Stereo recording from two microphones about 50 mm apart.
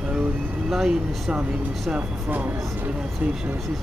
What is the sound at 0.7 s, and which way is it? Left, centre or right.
Speech, centre.